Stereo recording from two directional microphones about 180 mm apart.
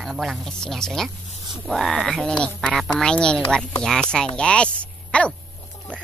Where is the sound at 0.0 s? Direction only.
Centre (ahead or behind).